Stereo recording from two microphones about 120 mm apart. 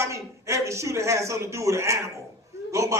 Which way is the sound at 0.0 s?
25° right (ahead or behind).